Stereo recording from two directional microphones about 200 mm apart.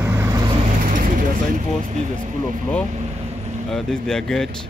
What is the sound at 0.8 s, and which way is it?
Vehicle, 40° right (ahead or behind).